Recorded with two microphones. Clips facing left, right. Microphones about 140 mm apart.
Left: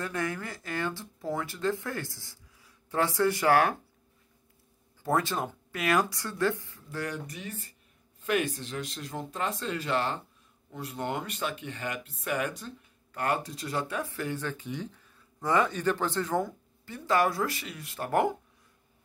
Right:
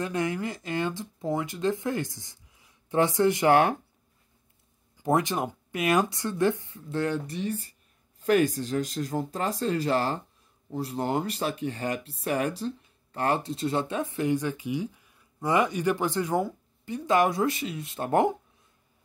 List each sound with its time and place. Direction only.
0.0 s speech: 20° right (ahead or behind)
5.0 s speech: 20° right (ahead or behind)